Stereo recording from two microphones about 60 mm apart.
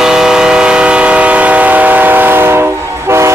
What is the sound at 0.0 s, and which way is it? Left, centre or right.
Train, centre.